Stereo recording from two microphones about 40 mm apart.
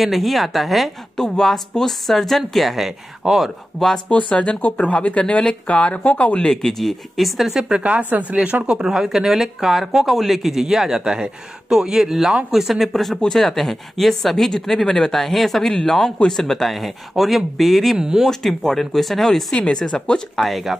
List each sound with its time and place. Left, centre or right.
0.0 s speech: centre
1.1 s speech: centre
3.8 s speech: centre
4.1 s speech: left
6.6 s speech: centre
7.6 s a woman's voice: right
8.5 s speech: right
8.8 s speech: centre
14.9 s speech: left
15.1 s speech: centre
17.9 s speech: centre
18.3 s speech: centre
19.5 s speech: left
20.3 s speech: centre